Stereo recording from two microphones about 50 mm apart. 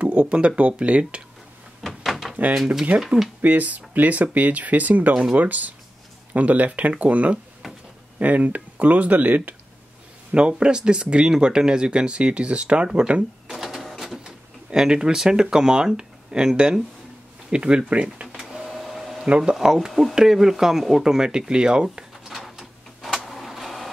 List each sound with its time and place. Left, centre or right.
0.0 s speech: right
1.8 s door: centre
2.5 s speech: centre
3.4 s speech: right
10.3 s speech: centre
13.5 s cash register: centre
14.2 s speech: centre
18.4 s printer: centre
19.2 s speech: right
19.5 s speech: centre
19.9 s speech: centre
22.3 s a sound: centre